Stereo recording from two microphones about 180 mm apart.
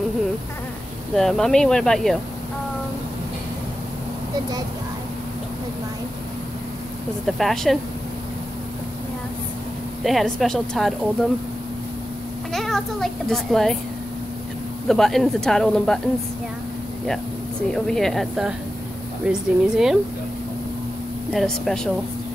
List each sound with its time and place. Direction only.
1.1 s a child's voice: centre (ahead or behind)
7.2 s a child's voice: centre (ahead or behind)
10.0 s a child's voice: centre (ahead or behind)
12.5 s a child's voice: centre (ahead or behind)
14.9 s a child's voice: centre (ahead or behind)
17.6 s a child's voice: centre (ahead or behind)
21.3 s a child's voice: centre (ahead or behind)